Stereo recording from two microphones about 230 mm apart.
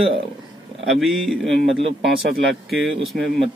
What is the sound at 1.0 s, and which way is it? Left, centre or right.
Speech, centre.